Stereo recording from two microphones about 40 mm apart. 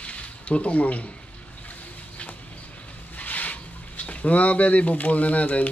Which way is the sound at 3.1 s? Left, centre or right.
Left.